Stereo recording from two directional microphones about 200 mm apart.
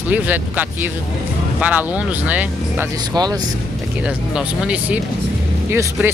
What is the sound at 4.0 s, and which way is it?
Speech, 5° right (ahead or behind).